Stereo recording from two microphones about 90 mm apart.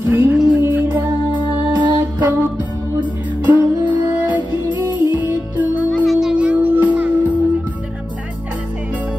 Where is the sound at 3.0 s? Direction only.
20° right (ahead or behind).